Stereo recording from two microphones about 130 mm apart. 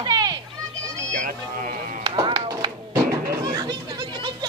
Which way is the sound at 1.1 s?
80° right.